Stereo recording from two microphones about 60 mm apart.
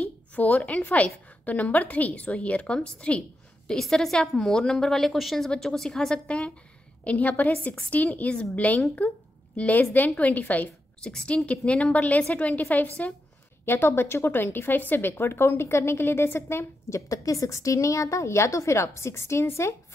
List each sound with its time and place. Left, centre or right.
0.4 s a woman's voice: left
3.7 s a woman's voice: centre
7.1 s a woman's voice: left
11.0 s a woman's voice: centre
13.7 s speech: left
17.1 s a woman's voice: left